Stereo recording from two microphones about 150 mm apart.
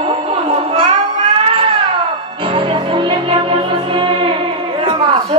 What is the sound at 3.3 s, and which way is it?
Music, 35° right (ahead or behind).